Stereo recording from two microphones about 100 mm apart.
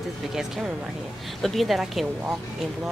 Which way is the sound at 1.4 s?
Centre (ahead or behind).